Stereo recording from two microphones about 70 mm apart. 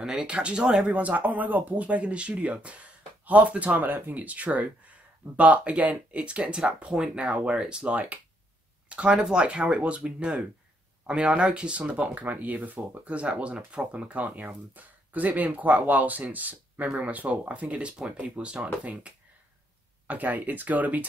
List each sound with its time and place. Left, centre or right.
0.0 s speech: centre
20.1 s speech: right